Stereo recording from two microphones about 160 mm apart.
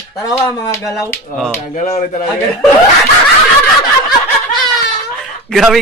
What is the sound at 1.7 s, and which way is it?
Speech, 55° left (ahead or behind).